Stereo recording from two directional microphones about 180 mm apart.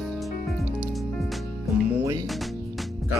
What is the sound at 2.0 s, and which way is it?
Music, 20° right (ahead or behind).